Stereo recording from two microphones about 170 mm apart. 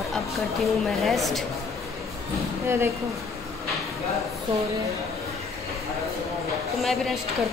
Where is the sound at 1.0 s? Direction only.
Centre (ahead or behind).